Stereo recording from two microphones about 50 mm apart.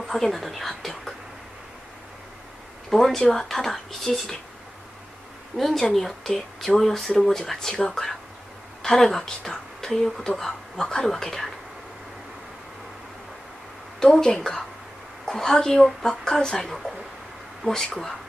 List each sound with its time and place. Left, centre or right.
0.0 s speech: centre
2.9 s speech: centre
5.6 s speech: centre
13.9 s speech: centre
17.6 s speech: left